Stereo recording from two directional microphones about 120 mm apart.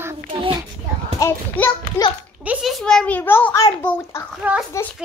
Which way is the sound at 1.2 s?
25° left (ahead or behind).